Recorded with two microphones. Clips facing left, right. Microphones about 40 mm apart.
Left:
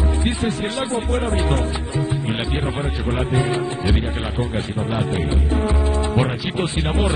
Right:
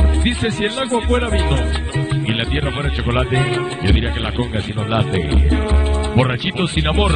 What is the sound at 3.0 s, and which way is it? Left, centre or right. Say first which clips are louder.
A man's voice: right 3 dB; right.